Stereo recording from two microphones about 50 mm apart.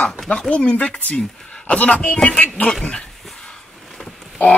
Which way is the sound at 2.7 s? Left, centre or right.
Centre.